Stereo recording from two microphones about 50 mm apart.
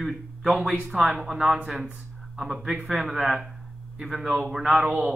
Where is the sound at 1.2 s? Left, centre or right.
Centre.